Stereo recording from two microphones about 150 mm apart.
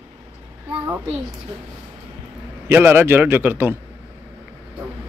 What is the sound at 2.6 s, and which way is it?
Speech, 15° right (ahead or behind).